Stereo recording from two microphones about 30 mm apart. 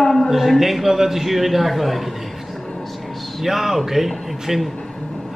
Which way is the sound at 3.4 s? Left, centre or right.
Centre.